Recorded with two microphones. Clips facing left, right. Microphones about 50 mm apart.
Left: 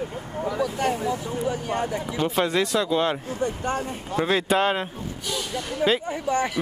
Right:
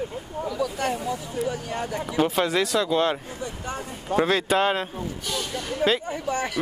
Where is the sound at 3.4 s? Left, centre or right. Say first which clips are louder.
Left 6 dB; left.